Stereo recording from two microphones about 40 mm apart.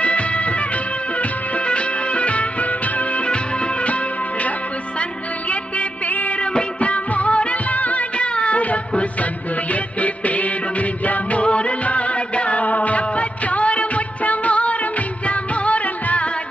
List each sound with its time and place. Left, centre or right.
0.0 s music: left
1.7 s music: left
5.5 s music: left
6.8 s music of bollywood: left
10.0 s music: left
11.4 s music: left